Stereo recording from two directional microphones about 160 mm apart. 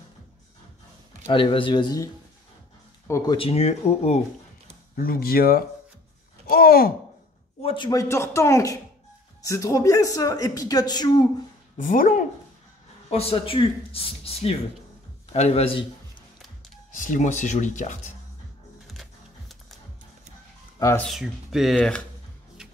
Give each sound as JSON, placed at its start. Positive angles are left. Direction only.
{"t": 1.2, "sound": "speech", "side_deg": 35}
{"t": 3.1, "sound": "speech", "side_deg": 20}
{"t": 3.3, "sound": "speech", "side_deg": 40}
{"t": 4.9, "sound": "speech", "side_deg": 70}
{"t": 7.6, "sound": "speech", "side_deg": 30}
{"t": 11.7, "sound": "speech", "side_deg": 55}
{"t": 13.1, "sound": "a man's voice", "side_deg": 40}
{"t": 16.9, "sound": "speech", "side_deg": 55}
{"t": 21.0, "sound": "speech", "side_deg": 0}